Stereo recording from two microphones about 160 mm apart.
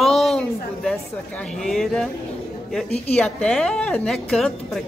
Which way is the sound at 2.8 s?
40° left (ahead or behind).